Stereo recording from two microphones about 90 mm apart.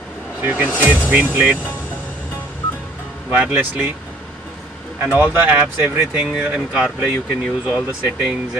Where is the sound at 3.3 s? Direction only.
15° right (ahead or behind).